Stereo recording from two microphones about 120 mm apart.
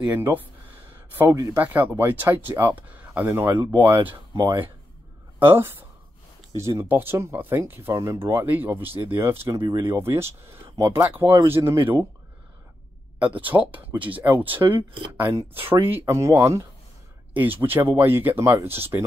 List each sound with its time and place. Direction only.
0.0 s speech: 15° right (ahead or behind)
3.7 s speech: 40° right (ahead or behind)
5.5 s speech: 20° right (ahead or behind)
9.6 s speech: 40° right (ahead or behind)
9.8 s speech: 20° right (ahead or behind)
13.2 s speech: 15° right (ahead or behind)
14.6 s speech: 40° right (ahead or behind)
15.1 s speech: 15° right (ahead or behind)
17.3 s speech: 15° right (ahead or behind)